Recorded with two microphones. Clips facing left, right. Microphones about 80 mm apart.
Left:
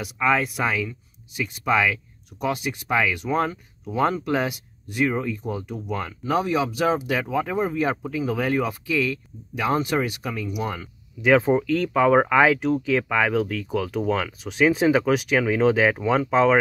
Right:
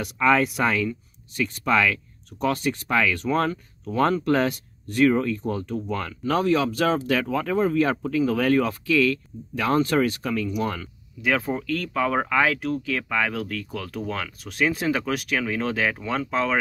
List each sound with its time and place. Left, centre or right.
0.0 s speech: centre